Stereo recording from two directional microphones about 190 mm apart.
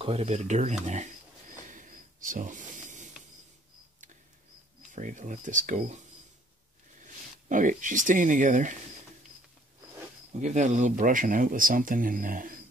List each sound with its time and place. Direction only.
0.0 s speech: 30° right (ahead or behind)
1.7 s a sound: 45° right (ahead or behind)
4.9 s speech: 40° right (ahead or behind)
10.4 s speech: 40° right (ahead or behind)